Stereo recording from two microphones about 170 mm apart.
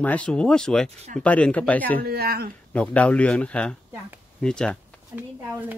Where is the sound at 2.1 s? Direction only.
65° right (ahead or behind).